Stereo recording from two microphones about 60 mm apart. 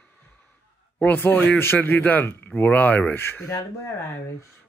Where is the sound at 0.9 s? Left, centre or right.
Left.